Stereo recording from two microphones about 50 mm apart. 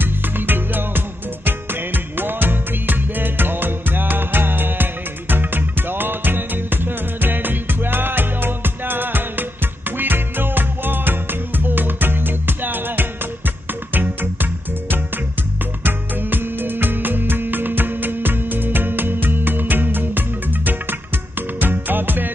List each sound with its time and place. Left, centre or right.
0.0 s music: right